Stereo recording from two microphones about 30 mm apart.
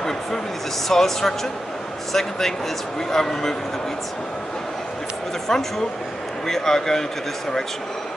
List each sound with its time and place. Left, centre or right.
0.8 s speech: centre
5.5 s speech: centre